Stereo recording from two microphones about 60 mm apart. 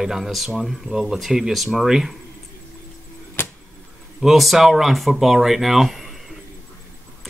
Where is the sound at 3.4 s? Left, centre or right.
Left.